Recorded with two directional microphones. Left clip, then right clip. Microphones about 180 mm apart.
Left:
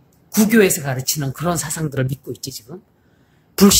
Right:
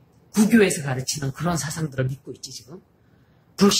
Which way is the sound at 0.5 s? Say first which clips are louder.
Left 5 dB; 50° left (ahead or behind).